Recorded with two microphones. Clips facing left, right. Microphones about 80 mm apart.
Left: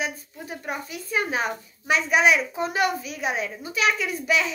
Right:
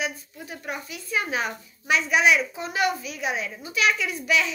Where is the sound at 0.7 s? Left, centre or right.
Left.